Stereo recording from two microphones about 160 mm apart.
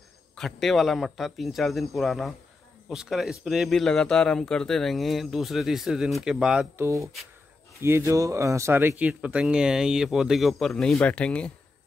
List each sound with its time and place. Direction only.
0.4 s speech: centre (ahead or behind)
6.8 s speech: 20° right (ahead or behind); by 11.5 s 5° left (ahead or behind)